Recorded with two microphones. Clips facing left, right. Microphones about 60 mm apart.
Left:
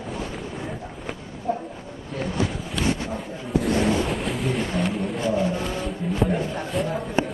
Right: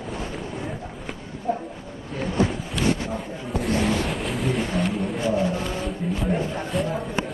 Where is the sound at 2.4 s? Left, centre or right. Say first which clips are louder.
Right 4 dB; right.